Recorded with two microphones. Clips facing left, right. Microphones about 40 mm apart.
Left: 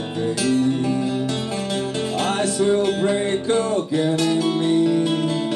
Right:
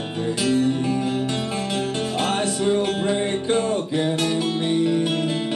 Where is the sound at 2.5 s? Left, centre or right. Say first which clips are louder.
Left 3 dB; centre.